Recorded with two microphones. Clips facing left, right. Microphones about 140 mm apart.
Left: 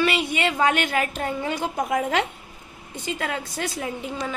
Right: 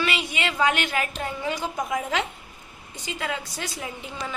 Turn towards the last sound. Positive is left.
turn(degrees=45)  # may be behind; listen again after turning